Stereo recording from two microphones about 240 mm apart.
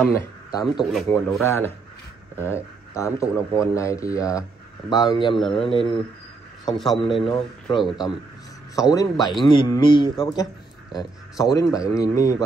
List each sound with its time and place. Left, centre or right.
0.0 s a man's voice: centre
0.9 s speech: centre
1.4 s speech: centre
6.6 s speech: centre
7.0 s speech: left
8.7 s speech: centre
11.5 s speech: centre